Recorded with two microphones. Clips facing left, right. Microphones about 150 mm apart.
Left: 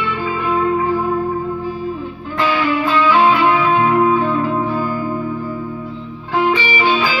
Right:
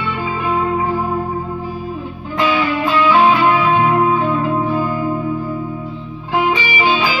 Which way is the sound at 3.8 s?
15° right (ahead or behind).